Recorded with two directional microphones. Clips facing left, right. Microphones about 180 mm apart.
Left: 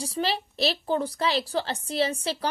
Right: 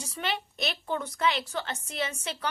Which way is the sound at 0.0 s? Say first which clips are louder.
Left 5 dB; 35° left (ahead or behind).